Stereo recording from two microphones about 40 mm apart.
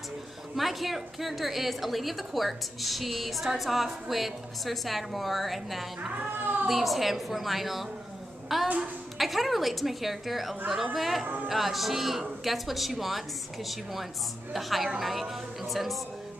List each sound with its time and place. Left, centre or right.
0.6 s a woman's voice: centre
8.6 s a child's voice: right
9.2 s a woman's voice: centre
14.5 s a woman's voice: centre